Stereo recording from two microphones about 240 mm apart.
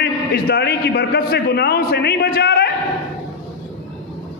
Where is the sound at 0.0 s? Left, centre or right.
Left.